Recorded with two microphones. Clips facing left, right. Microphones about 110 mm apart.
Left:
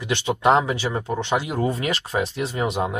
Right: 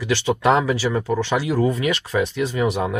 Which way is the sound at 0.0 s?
25° left (ahead or behind).